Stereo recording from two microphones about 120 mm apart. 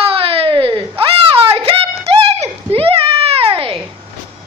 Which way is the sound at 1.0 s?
50° right (ahead or behind).